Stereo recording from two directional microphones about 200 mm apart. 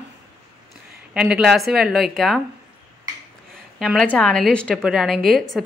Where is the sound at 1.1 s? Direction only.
5° right (ahead or behind).